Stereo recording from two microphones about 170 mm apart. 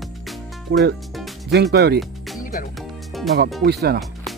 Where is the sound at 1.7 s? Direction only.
70° right (ahead or behind).